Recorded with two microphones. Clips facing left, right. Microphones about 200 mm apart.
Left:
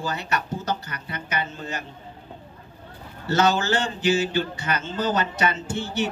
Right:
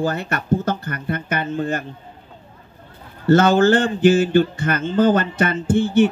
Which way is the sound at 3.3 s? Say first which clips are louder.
Right 8 dB; 55° right (ahead or behind).